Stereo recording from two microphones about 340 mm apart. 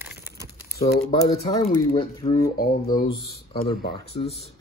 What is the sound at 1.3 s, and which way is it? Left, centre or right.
Speech, centre.